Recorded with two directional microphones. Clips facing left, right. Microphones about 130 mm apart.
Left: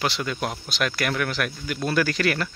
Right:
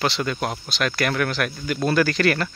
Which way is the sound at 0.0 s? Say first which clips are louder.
Right 3 dB; 10° left (ahead or behind).